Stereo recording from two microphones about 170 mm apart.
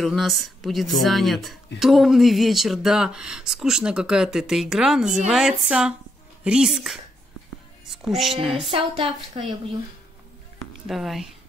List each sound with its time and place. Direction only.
0.0 s a woman's voice: centre (ahead or behind)
8.6 s speech: 30° right (ahead or behind)
10.9 s speech: centre (ahead or behind)